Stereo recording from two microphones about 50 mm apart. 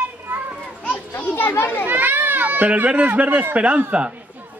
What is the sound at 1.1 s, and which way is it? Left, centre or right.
Children playing, left.